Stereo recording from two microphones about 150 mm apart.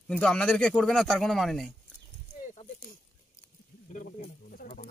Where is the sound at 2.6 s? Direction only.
40° left (ahead or behind).